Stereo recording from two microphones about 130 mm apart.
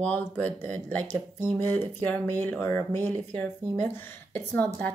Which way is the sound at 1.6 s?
15° left (ahead or behind).